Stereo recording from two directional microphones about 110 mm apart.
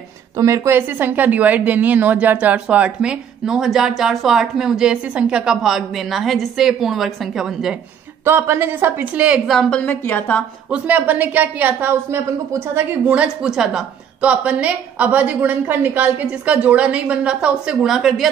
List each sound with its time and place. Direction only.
0.4 s a woman's voice: 25° right (ahead or behind); by 7.7 s 5° right (ahead or behind)
8.3 s a woman's voice: 20° right (ahead or behind)
9.5 s a woman's voice: 5° left (ahead or behind)
10.7 s a woman's voice: 15° right (ahead or behind)